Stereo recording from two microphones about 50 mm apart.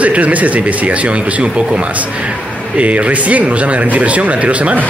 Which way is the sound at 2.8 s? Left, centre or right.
Right.